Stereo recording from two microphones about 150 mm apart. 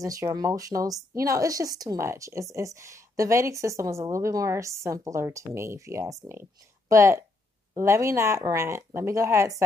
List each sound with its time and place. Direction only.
0.0 s a woman's voice: 20° right (ahead or behind)